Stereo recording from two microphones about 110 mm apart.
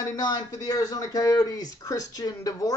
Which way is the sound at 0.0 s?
35° left (ahead or behind).